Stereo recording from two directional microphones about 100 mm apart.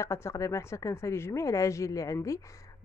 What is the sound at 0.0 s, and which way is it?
Speech, 30° left (ahead or behind).